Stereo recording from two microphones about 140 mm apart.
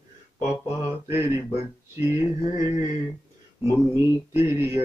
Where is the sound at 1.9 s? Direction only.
20° right (ahead or behind).